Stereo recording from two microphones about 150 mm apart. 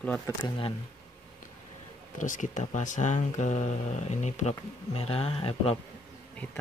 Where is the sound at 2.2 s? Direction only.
55° left (ahead or behind); by 5.8 s 40° left (ahead or behind).